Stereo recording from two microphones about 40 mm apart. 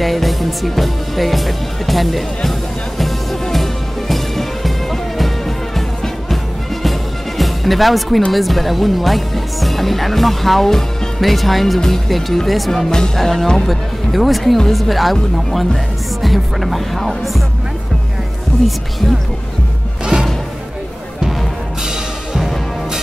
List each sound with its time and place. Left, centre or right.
0.0 s speech: centre
3.0 s music: centre
6.3 s music: centre
8.3 s speech: centre
12.9 s speech: centre
21.8 s music: centre